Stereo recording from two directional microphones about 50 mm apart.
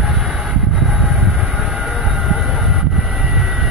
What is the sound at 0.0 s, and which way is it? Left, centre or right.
Vehicle, centre.